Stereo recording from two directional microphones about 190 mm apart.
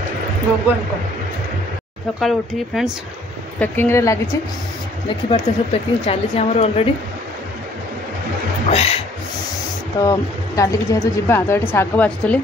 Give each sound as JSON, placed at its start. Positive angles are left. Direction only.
{"t": 2.1, "sound": "speech", "side_deg": 0}
{"t": 5.3, "sound": "speech", "side_deg": 30}
{"t": 8.6, "sound": "speech", "side_deg": 30}
{"t": 10.0, "sound": "speech", "side_deg": 15}